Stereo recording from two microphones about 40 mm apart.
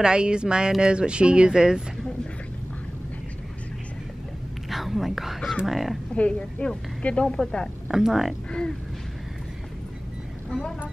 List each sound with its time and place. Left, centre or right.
0.0 s a woman's voice: right
4.6 s speech: centre
6.1 s speech: left
7.2 s a woman's voice: centre
7.9 s speech: centre
8.5 s a sound: left